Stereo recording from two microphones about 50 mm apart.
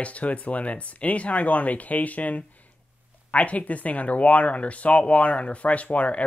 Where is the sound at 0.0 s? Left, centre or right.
Left.